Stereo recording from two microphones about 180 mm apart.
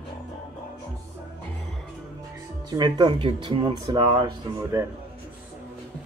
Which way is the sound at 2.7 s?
25° right (ahead or behind).